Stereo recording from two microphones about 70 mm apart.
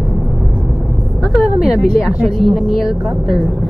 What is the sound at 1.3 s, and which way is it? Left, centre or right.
Speech, centre.